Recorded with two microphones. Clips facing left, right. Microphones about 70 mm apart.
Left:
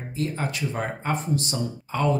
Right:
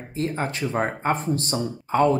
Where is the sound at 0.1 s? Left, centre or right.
Right.